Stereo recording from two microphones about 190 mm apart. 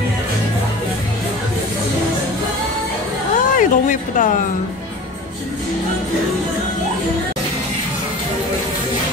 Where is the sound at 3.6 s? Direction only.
45° left (ahead or behind).